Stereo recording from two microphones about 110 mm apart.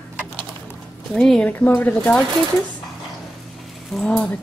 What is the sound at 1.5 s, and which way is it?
Speech, 15° left (ahead or behind).